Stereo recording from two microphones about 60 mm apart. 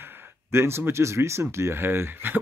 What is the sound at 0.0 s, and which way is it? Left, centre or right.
Speech, right.